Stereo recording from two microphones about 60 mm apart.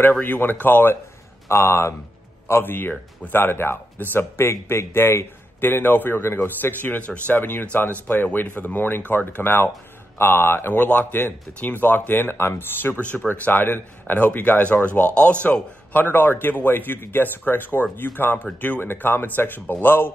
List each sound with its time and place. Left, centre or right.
0.2 s speech: left
1.5 s a man's voice: left